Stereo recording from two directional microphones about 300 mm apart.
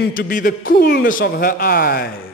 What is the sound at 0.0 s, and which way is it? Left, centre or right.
A man's voice, left.